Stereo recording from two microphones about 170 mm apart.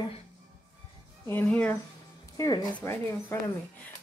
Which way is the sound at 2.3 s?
20° left (ahead or behind).